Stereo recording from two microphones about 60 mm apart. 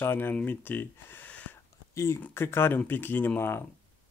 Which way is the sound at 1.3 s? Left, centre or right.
Left.